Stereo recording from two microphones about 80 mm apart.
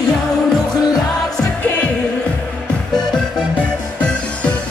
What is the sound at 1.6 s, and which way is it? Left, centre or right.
Music, left.